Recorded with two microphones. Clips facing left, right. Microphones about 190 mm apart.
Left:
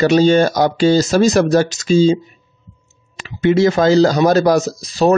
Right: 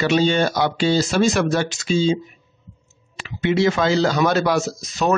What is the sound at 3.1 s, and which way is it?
Speech, 40° left (ahead or behind).